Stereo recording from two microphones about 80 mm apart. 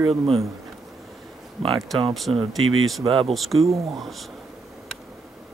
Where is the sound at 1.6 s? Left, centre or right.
Centre.